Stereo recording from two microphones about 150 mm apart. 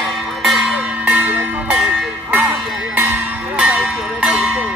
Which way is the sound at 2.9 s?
10° right (ahead or behind).